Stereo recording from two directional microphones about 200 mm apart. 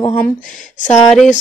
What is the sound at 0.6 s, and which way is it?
Speech, 40° left (ahead or behind).